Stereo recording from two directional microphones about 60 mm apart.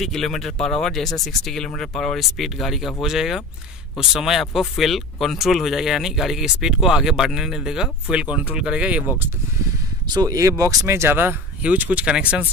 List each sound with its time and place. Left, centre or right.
0.0 s speech: centre
10.1 s speech: right
10.6 s speech: right
10.9 s speech: right
11.6 s speech: right